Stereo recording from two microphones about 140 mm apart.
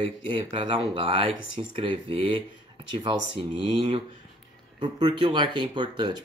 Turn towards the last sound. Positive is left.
turn(degrees=-35)  # may be behind; listen again after turning